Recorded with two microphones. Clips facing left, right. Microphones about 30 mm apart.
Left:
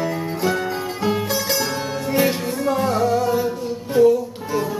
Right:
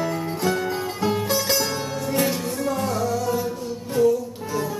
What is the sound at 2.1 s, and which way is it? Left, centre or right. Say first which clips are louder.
Music: left 4 dB; left.